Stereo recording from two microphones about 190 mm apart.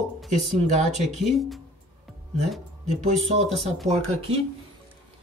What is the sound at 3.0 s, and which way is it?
Speech, 35° right (ahead or behind).